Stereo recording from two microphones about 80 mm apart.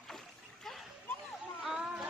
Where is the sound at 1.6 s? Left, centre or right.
Centre.